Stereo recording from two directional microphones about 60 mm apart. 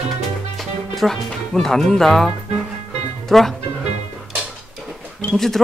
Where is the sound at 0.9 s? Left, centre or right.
Centre.